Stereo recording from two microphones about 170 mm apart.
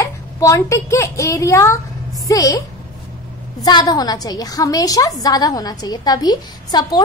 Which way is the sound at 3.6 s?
25° left (ahead or behind).